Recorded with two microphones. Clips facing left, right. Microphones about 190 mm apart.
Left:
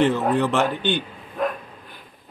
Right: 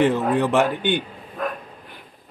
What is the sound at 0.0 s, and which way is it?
Speech, 5° right (ahead or behind).